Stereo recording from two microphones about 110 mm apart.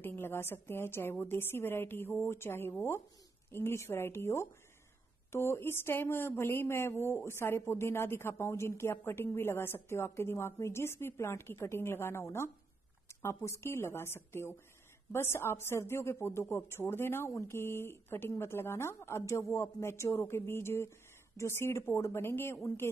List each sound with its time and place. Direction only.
0.0 s a woman's voice: 20° left (ahead or behind)